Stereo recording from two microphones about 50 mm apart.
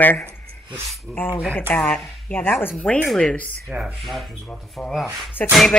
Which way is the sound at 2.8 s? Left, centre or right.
Left.